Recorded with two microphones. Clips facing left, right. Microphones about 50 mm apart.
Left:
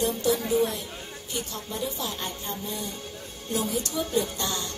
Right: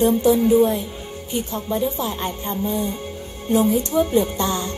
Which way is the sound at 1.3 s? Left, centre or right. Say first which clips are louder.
Right 10 dB; right.